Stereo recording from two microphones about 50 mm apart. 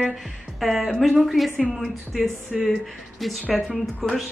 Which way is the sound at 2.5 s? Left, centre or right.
Centre.